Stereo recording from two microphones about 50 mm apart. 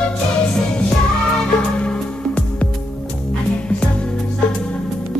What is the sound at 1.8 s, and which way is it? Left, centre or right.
Music, left.